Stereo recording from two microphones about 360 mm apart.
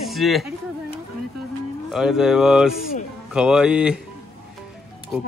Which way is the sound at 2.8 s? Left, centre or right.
Left.